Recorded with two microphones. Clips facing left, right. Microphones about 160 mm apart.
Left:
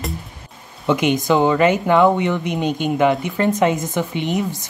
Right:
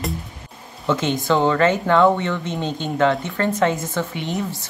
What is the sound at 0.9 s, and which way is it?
Speech, 15° left (ahead or behind).